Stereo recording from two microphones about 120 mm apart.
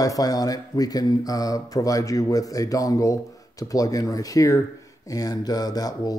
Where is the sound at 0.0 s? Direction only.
30° left (ahead or behind).